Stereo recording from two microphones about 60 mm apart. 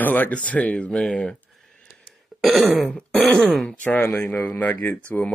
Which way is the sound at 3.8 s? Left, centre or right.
Left.